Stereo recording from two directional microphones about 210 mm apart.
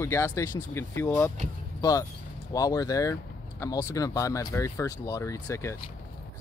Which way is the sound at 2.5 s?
15° left (ahead or behind).